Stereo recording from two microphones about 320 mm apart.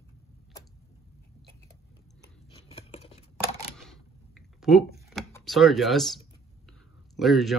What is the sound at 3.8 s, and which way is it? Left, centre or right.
Computer keyboard, centre.